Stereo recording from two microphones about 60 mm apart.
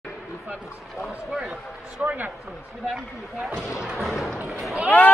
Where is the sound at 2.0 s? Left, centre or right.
Right.